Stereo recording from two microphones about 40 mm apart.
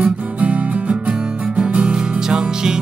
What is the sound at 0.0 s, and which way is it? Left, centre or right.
Music, right.